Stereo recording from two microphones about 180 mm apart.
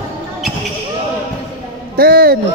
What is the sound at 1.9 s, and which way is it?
Speech, 55° right (ahead or behind).